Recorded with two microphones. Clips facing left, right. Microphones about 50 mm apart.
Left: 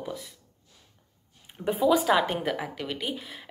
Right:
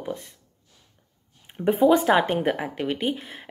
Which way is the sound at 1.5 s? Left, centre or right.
Centre.